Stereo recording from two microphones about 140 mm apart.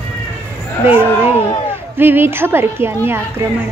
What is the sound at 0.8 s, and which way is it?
A woman's voice, 15° right (ahead or behind).